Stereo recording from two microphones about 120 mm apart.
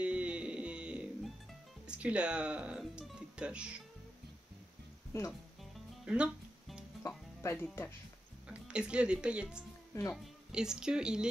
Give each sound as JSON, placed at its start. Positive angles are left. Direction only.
{"t": 0.0, "sound": "music", "side_deg": -10}
{"t": 1.9, "sound": "speech", "side_deg": -10}
{"t": 5.1, "sound": "speech", "side_deg": 25}
{"t": 5.6, "sound": "music", "side_deg": -10}
{"t": 7.0, "sound": "speech", "side_deg": 20}
{"t": 8.5, "sound": "speech", "side_deg": -10}